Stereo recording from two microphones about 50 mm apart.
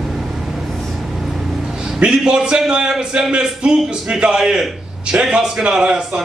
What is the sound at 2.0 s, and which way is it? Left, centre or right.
A man's voice, centre.